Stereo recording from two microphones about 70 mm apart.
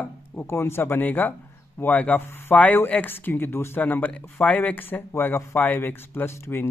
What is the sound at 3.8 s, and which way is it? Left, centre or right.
Speech, left.